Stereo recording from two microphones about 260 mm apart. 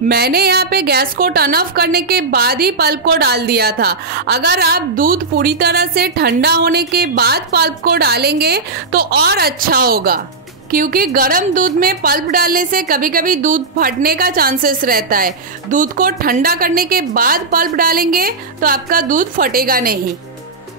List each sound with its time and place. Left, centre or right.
0.1 s a woman's voice: right